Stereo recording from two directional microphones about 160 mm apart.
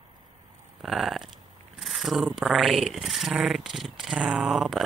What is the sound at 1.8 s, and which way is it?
Speech, centre (ahead or behind).